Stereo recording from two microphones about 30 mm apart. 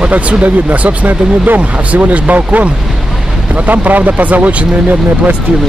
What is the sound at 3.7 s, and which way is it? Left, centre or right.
Speech, right.